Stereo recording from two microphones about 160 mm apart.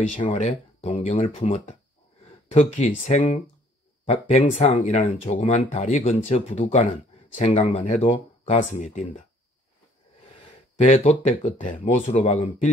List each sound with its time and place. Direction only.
0.2 s speech: 40° left (ahead or behind)
0.8 s speech: 35° left (ahead or behind); by 9.2 s 55° left (ahead or behind)
10.9 s speech: 45° left (ahead or behind)